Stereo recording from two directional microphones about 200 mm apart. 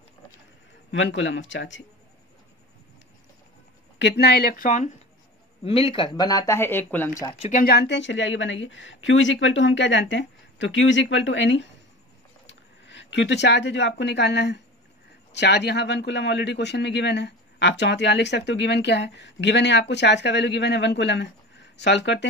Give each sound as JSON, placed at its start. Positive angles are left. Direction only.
{"t": 0.9, "sound": "a woman's voice", "side_deg": 70}
{"t": 4.0, "sound": "speech", "side_deg": 55}
{"t": 5.6, "sound": "speech", "side_deg": 30}
{"t": 7.3, "sound": "speech", "side_deg": 35}
{"t": 7.6, "sound": "a woman's voice", "side_deg": 55}